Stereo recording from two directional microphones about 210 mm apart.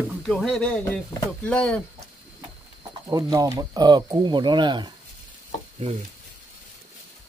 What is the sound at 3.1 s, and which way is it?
Speech, 20° right (ahead or behind).